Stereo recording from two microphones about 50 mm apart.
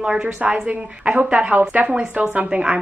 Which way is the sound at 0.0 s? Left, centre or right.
Centre.